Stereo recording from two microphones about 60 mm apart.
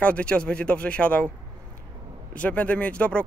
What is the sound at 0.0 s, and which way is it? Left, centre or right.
Speech, centre.